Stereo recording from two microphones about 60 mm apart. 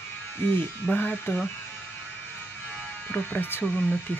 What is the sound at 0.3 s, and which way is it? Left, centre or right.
Speech, left.